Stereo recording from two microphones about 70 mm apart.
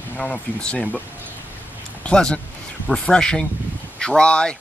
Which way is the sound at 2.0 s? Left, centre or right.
Centre.